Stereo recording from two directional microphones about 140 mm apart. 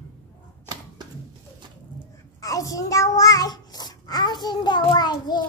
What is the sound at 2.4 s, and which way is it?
A child's voice, 25° left (ahead or behind).